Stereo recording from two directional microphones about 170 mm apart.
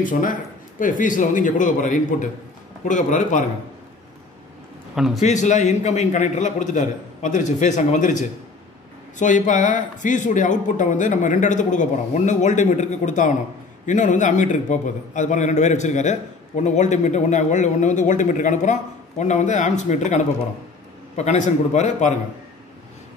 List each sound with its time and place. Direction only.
0.0 s speech: 50° left (ahead or behind)
4.9 s a man's voice: centre (ahead or behind)
5.2 s speech: 45° left (ahead or behind)